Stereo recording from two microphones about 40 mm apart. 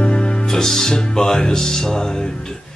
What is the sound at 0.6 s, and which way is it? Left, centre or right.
Music, centre.